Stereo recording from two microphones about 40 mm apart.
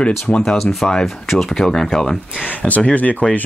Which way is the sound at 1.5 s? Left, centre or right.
Centre.